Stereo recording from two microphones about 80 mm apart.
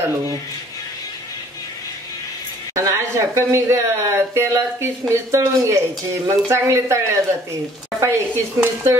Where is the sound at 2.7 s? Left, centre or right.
Right.